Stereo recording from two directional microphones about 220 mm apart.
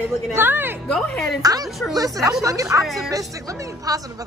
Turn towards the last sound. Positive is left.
turn(degrees=-15)  # may be behind; listen again after turning